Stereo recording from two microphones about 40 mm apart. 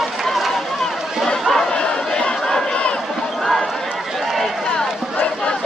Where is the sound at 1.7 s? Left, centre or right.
Left.